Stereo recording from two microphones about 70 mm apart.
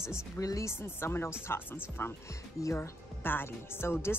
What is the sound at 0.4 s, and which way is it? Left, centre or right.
Speech, left.